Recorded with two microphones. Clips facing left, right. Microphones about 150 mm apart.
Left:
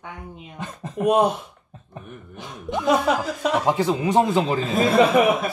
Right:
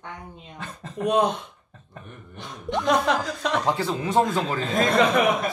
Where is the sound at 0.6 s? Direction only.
20° left (ahead or behind).